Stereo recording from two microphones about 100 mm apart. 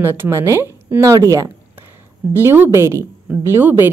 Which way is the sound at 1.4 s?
20° right (ahead or behind).